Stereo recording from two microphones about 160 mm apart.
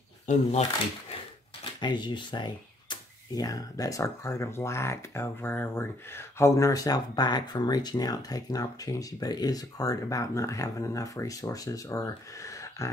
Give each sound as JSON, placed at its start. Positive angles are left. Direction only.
{"t": 0.3, "sound": "speech", "side_deg": 50}
{"t": 1.8, "sound": "speech", "side_deg": 30}